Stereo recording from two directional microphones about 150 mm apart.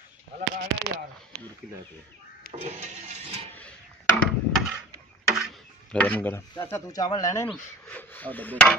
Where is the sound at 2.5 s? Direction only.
50° right (ahead or behind).